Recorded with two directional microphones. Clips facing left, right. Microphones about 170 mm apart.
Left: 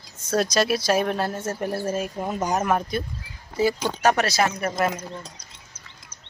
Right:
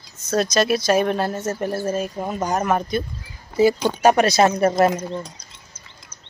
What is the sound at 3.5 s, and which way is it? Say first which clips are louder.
Speech: right 6 dB; 20° right (ahead or behind).